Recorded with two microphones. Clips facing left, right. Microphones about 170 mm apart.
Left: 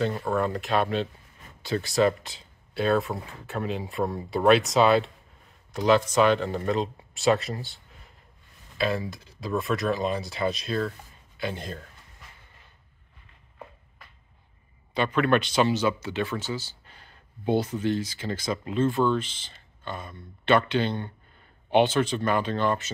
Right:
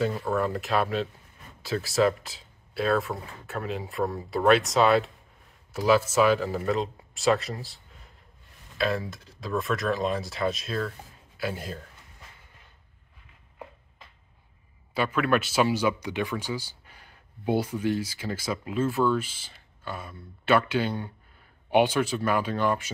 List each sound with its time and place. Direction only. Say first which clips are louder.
0.1 s speech: left 1 dB; centre (ahead or behind)
15.0 s speech: left 2 dB; 5° right (ahead or behind)